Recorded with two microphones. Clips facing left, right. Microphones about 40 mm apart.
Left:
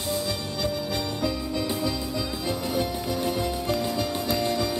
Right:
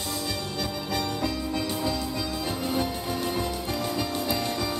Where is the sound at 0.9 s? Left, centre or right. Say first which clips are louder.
Even; right.